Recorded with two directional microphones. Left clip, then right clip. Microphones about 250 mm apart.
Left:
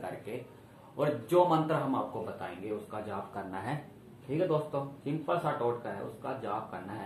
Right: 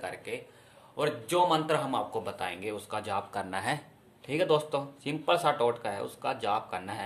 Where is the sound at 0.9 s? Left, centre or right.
Right.